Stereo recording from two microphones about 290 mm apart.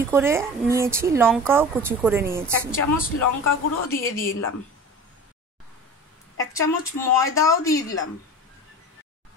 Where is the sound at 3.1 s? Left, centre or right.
Left.